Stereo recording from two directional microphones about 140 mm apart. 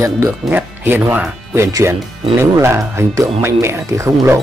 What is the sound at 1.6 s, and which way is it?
Speech, 20° right (ahead or behind).